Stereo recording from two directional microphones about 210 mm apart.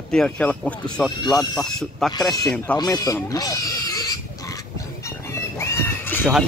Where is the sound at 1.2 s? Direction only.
20° left (ahead or behind).